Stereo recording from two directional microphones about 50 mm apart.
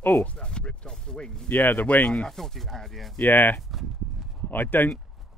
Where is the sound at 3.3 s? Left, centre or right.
Left.